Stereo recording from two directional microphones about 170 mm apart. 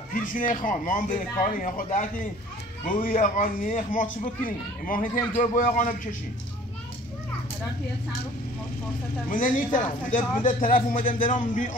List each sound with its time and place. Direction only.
0.1 s speech: 55° left (ahead or behind)
9.3 s speech: 55° left (ahead or behind)